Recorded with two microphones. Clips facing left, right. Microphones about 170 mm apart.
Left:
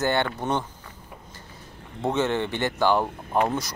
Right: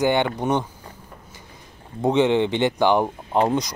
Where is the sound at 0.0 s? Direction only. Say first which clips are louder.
Right 4 dB; 15° right (ahead or behind).